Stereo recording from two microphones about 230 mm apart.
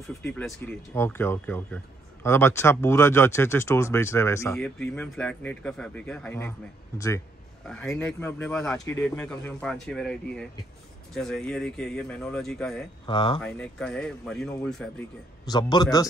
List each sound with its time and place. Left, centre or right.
0.2 s speech: centre
7.6 s speech: centre
13.0 s speech: left
13.4 s speech: centre
15.5 s speech: centre